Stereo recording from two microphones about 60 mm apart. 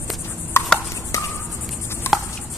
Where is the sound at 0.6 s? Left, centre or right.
Left.